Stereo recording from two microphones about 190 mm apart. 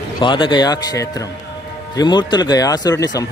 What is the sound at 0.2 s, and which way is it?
A man's voice, 25° left (ahead or behind).